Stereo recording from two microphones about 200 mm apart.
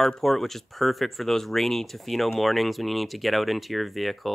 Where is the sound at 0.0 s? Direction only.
Centre (ahead or behind).